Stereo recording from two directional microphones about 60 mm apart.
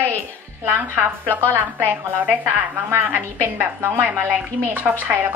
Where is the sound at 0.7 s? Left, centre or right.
Right.